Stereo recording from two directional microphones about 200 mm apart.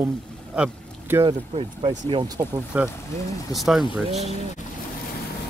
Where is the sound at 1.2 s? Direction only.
25° right (ahead or behind).